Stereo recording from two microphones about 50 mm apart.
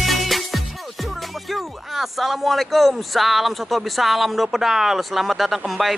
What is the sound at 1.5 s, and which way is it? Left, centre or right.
Speech, centre.